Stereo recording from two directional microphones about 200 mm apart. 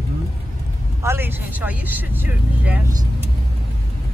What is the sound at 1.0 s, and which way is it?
Speech, 10° right (ahead or behind).